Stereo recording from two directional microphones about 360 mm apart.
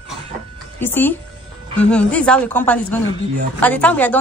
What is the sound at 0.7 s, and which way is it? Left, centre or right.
A woman's voice, centre.